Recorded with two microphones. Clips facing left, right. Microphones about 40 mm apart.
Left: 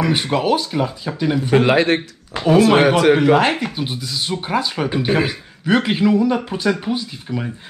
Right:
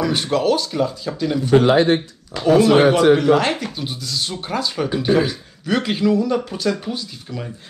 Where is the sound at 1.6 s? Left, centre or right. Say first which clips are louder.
Right 1 dB; left.